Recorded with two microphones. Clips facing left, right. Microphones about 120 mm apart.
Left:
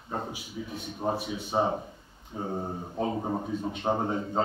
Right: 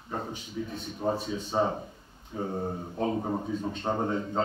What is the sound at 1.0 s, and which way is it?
A man's voice, 10° left (ahead or behind).